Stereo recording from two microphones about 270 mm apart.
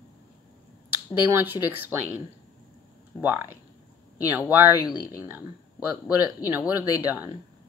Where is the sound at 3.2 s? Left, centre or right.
Centre.